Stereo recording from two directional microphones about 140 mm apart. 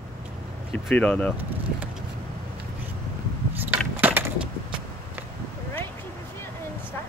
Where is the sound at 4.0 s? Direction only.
15° right (ahead or behind).